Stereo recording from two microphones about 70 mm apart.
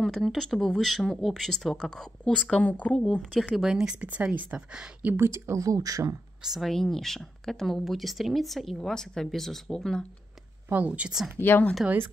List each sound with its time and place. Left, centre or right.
0.0 s speech: centre
3.5 s speech: centre
5.1 s speech: right
6.4 s speech: centre
6.7 s speech: centre
10.7 s speech: right
11.3 s speech: left